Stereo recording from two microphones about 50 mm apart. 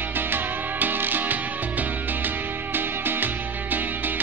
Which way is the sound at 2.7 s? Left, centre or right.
Right.